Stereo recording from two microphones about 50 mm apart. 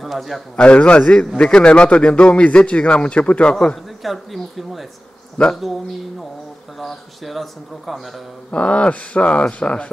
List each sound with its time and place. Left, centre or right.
0.0 s a man's voice: centre
0.6 s a man's voice: left
4.0 s speech: centre
6.8 s speech: centre
8.5 s a man's voice: left